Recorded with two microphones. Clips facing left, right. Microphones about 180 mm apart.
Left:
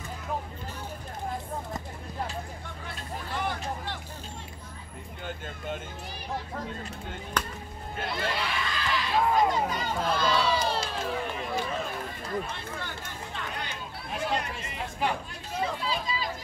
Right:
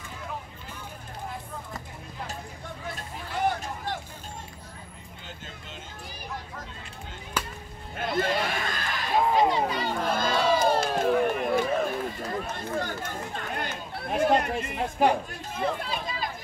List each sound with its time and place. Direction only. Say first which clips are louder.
2.9 s vehicle: left 1 dB; 45° right (ahead or behind)
7.3 s a sound: even; 5° right (ahead or behind)
8.0 s a sound: right 5 dB; 50° right (ahead or behind)
9.5 s crowd: right 2 dB; 45° left (ahead or behind)
9.8 s crowd: even; 50° right (ahead or behind)
12.4 s chatter: right 6 dB; 45° right (ahead or behind)